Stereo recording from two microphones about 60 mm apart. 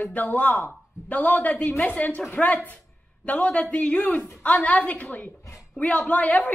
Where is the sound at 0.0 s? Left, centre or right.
Left.